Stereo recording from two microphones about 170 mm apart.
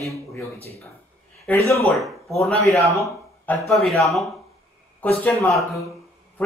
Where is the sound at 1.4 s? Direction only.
15° left (ahead or behind).